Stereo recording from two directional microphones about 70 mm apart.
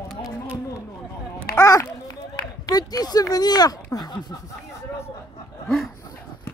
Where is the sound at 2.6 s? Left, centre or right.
Left.